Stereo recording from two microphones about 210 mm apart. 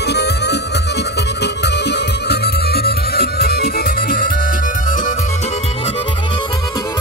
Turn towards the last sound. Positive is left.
turn(degrees=40)  # may be behind; listen again after turning